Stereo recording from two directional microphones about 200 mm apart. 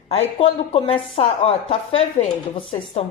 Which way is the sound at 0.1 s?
30° left (ahead or behind).